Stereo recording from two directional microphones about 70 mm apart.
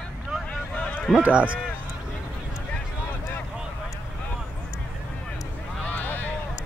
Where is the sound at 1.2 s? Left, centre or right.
Centre.